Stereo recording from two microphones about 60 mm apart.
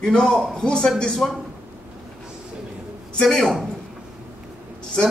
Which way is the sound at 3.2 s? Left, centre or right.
Centre.